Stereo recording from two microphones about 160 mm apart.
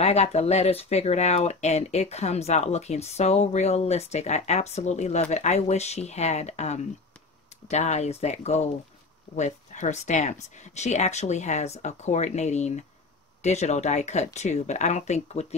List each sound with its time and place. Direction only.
0.0 s speech: 40° left (ahead or behind)